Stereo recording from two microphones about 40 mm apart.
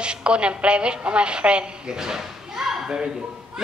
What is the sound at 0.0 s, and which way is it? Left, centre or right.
A woman's voice, right.